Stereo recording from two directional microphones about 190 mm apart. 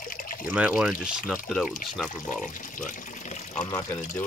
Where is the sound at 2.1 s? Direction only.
45° left (ahead or behind).